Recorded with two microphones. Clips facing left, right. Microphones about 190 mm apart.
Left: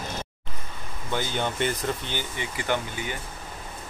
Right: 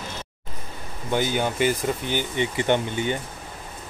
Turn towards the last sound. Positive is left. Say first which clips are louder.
# right 6 dB
turn(degrees=-25)  # may be behind; listen again after turning